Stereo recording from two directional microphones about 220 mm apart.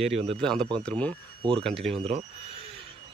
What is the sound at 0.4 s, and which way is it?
Speech, 5° left (ahead or behind).